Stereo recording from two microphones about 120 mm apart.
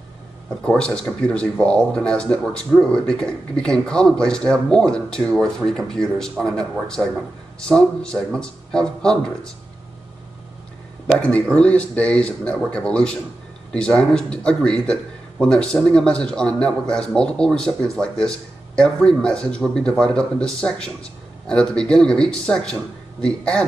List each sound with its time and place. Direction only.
0.7 s speech: 5° left (ahead or behind)
11.1 s speech: 10° left (ahead or behind)